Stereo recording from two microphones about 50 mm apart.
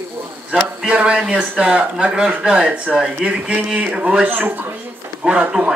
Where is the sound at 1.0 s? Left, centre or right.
Right.